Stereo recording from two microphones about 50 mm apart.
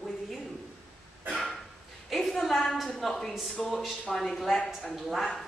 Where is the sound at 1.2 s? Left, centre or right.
Centre.